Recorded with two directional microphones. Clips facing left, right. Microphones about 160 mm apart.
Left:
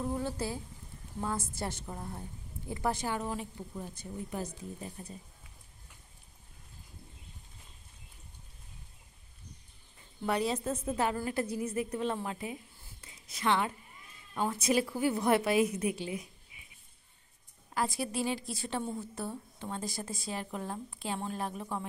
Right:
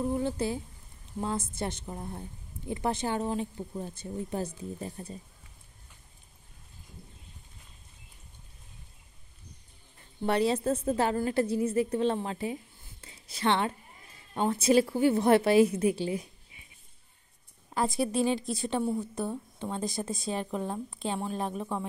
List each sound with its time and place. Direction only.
0.1 s a woman's voice: 20° right (ahead or behind)
10.2 s a woman's voice: 30° right (ahead or behind)
17.7 s a woman's voice: 25° right (ahead or behind)